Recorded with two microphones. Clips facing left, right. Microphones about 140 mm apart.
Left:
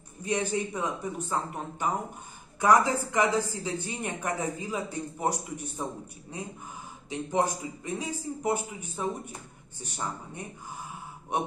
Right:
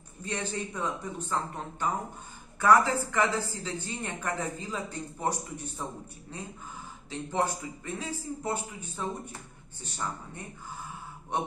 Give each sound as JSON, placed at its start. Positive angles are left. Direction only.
{"t": 0.2, "sound": "a woman's voice", "side_deg": 15}